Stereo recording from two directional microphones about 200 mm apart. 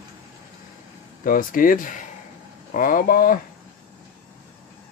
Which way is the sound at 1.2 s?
45° left (ahead or behind).